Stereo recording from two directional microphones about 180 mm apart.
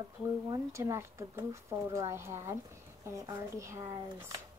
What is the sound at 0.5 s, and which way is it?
Speech, 15° right (ahead or behind).